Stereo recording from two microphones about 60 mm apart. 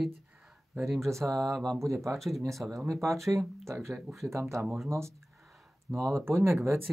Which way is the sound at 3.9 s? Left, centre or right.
Centre.